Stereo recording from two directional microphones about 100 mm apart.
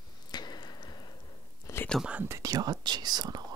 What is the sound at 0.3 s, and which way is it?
Squish, 45° left (ahead or behind).